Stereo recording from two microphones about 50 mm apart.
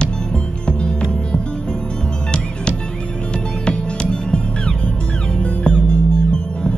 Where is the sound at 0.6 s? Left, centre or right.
Centre.